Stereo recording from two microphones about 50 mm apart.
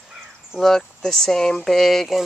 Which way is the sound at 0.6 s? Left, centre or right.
Centre.